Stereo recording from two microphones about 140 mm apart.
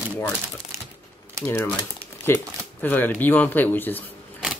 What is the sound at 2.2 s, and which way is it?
Speech, 15° left (ahead or behind).